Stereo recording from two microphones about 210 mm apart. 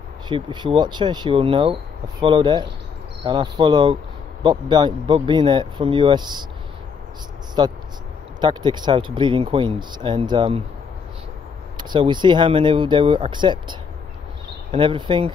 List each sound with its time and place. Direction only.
0.3 s speech: 20° right (ahead or behind)
7.6 s speech: 20° right (ahead or behind)
11.7 s speech: 20° right (ahead or behind)